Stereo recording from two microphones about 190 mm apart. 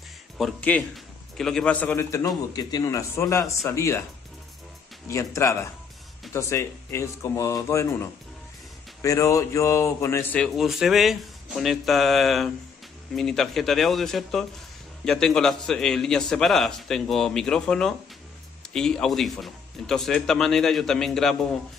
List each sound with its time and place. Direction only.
0.4 s a man's voice: 5° left (ahead or behind)
5.0 s a man's voice: 15° left (ahead or behind)
10.4 s a man's voice: centre (ahead or behind)